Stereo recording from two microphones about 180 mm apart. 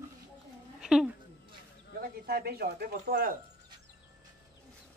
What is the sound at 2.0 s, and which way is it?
Speech, 55° right (ahead or behind).